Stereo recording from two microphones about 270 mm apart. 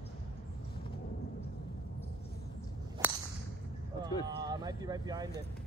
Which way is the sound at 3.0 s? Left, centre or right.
Centre.